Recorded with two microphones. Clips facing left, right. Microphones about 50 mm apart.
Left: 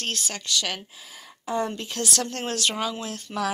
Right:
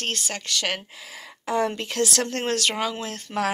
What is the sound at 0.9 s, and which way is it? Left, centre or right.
A woman's voice, right.